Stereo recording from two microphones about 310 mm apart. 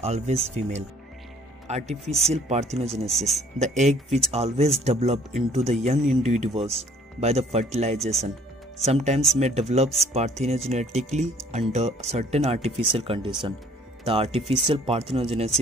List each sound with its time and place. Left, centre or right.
0.0 s speech: right
3.1 s speech: centre
3.5 s speech: right